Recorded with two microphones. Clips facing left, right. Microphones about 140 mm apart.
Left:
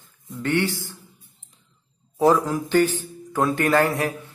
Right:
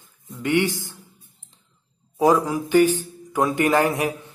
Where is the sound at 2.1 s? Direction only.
10° right (ahead or behind).